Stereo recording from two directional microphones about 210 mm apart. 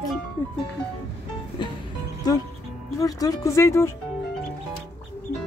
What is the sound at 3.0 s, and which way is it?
Speech, 15° left (ahead or behind).